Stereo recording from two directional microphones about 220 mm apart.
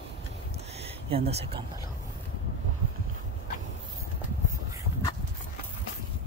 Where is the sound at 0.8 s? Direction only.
25° right (ahead or behind).